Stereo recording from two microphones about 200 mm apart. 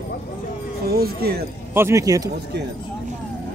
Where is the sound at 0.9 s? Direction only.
50° right (ahead or behind).